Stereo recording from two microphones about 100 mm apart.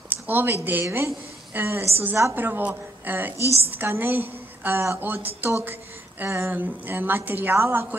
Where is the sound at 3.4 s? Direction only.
30° left (ahead or behind).